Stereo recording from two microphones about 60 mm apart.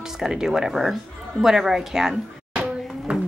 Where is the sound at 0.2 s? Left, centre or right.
Centre.